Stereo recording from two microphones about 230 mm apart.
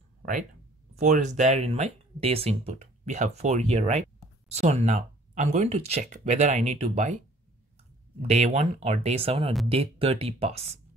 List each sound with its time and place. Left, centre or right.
0.2 s a sound: right
0.9 s speech: right
8.2 s speech: right